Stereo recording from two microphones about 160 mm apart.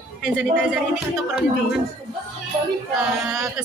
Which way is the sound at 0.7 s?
5° right (ahead or behind).